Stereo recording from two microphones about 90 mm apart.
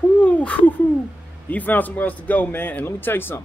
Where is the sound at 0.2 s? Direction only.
15° left (ahead or behind).